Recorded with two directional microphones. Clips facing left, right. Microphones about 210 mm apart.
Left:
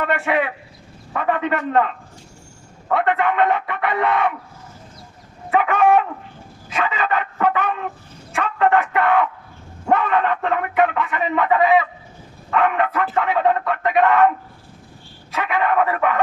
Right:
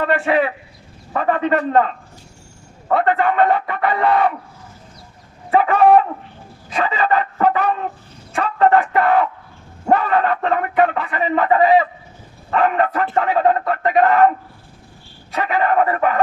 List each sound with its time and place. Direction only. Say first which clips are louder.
0.0 s speech: right 3 dB; 35° right (ahead or behind)
5.5 s speech: right 3 dB; 35° right (ahead or behind)
6.7 s dog: right 3 dB; 35° right (ahead or behind)
8.4 s speech: right 3 dB; 35° right (ahead or behind)
15.3 s speech: right 2 dB; 35° right (ahead or behind)